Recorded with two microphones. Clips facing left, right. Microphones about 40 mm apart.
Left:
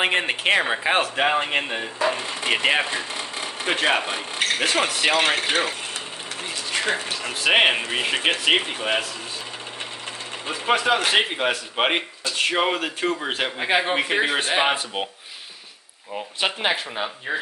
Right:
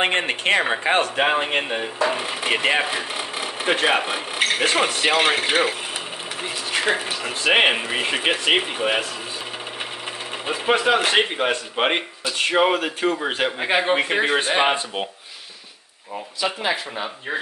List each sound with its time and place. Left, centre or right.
0.0 s speech: centre
2.9 s speech: centre
10.7 s speech: centre
16.3 s speech: left